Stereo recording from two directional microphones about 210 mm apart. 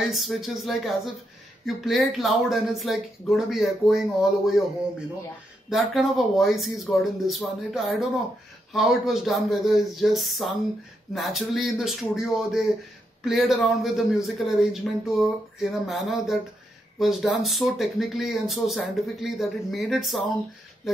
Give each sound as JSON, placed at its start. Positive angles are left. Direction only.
{"t": 0.0, "sound": "speech", "side_deg": 0}
{"t": 5.7, "sound": "speech", "side_deg": 0}